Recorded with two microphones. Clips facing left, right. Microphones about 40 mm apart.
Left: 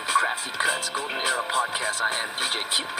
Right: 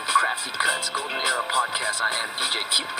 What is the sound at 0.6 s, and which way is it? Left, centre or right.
Speech, right.